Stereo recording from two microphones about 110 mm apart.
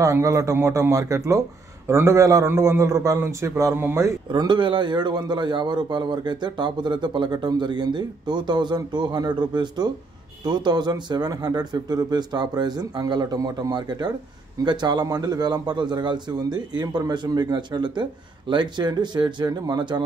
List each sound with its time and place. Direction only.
0.0 s a man's voice: 30° right (ahead or behind)
4.3 s a man's voice: 45° right (ahead or behind)